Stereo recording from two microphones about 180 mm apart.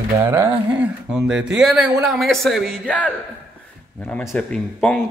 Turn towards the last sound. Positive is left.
turn(degrees=5)  # may be behind; listen again after turning